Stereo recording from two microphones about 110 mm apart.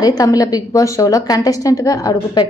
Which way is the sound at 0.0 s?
35° left (ahead or behind).